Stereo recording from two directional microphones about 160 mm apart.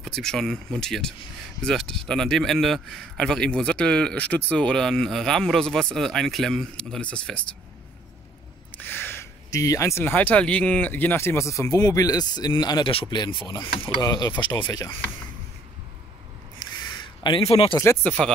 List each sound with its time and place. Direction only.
0.0 s a man's voice: 5° left (ahead or behind)
8.7 s speech: 10° left (ahead or behind)
16.5 s a sound: 30° left (ahead or behind)
17.7 s speech: 15° left (ahead or behind)